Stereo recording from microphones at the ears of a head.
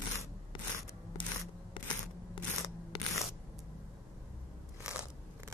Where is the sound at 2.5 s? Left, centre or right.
Left.